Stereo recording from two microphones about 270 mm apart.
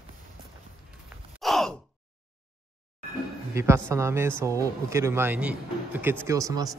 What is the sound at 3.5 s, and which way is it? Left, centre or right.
A man's voice, centre.